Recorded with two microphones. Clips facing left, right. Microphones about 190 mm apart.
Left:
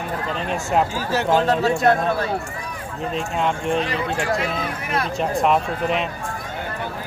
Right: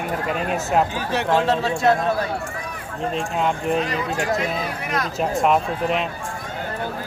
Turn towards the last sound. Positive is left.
turn(degrees=0)  # may be behind; listen again after turning